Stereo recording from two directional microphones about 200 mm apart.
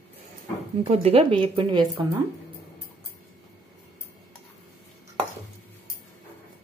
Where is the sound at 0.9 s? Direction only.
30° right (ahead or behind).